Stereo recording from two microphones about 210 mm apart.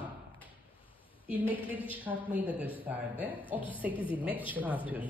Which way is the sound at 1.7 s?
10° right (ahead or behind).